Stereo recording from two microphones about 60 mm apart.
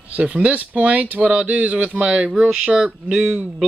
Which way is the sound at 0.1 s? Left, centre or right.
Right.